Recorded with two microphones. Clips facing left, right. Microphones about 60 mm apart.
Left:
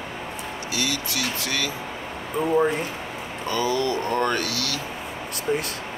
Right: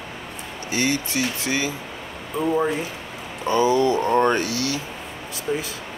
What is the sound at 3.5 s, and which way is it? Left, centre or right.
Speech, right.